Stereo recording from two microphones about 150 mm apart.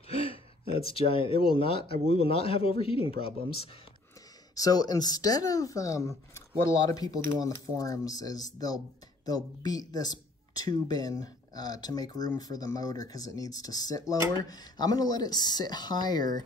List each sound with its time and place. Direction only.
0.1 s speech: 40° left (ahead or behind)
4.6 s speech: 25° left (ahead or behind)